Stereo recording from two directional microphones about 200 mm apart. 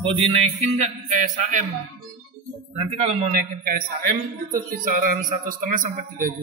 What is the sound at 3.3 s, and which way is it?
Speech, 45° right (ahead or behind).